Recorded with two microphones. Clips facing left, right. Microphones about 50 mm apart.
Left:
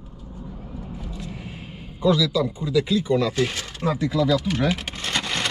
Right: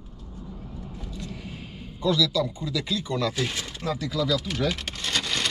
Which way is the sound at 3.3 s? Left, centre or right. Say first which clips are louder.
Left 5 dB; centre.